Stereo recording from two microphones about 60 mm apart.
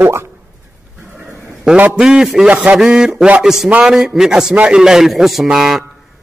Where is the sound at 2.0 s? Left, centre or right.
Centre.